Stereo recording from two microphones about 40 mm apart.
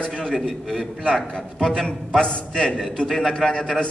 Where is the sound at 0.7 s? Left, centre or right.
Centre.